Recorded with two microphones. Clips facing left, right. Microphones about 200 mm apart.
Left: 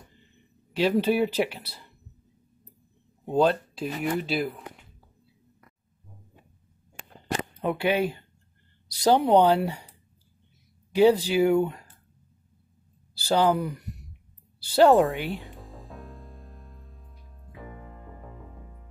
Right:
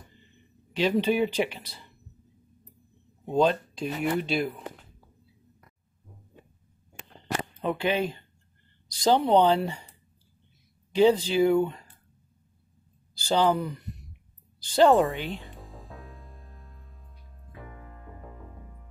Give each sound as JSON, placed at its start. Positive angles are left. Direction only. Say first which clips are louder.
{"t": 0.7, "sound": "speech", "louder": "left 1 dB", "side_deg": 10}
{"t": 3.3, "sound": "speech", "louder": "left 1 dB", "side_deg": 5}
{"t": 7.6, "sound": "speech", "louder": "left 2 dB", "side_deg": 10}
{"t": 13.1, "sound": "speech", "louder": "left 1 dB", "side_deg": 10}
{"t": 15.1, "sound": "speech", "louder": "left 2 dB", "side_deg": 15}
{"t": 15.4, "sound": "music", "louder": "left 1 dB", "side_deg": 0}